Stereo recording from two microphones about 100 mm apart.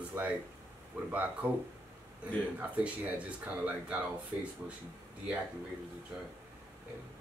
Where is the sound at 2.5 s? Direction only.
15° right (ahead or behind).